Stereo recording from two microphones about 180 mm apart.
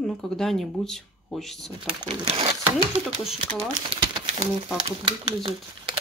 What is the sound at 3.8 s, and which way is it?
Crumpling, 30° right (ahead or behind).